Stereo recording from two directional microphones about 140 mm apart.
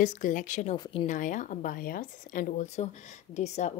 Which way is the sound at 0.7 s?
30° left (ahead or behind).